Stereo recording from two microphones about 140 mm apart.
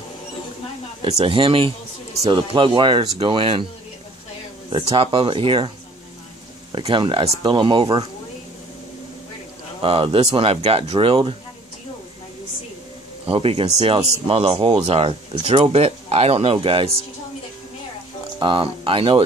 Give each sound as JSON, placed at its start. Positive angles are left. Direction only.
{"t": 1.0, "sound": "speech", "side_deg": -45}
{"t": 4.6, "sound": "speech", "side_deg": -40}
{"t": 6.7, "sound": "speech", "side_deg": -35}
{"t": 9.8, "sound": "speech", "side_deg": -40}
{"t": 13.2, "sound": "speech", "side_deg": -45}
{"t": 18.4, "sound": "speech", "side_deg": -35}